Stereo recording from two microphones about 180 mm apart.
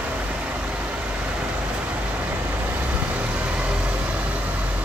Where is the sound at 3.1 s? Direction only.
5° right (ahead or behind).